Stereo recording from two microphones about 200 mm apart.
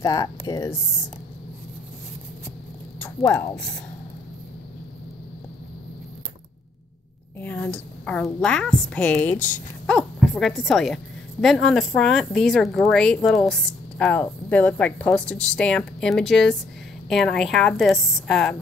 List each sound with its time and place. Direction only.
0.0 s speech: 20° left (ahead or behind)
3.0 s speech: 10° left (ahead or behind)
7.3 s a woman's voice: 10° left (ahead or behind)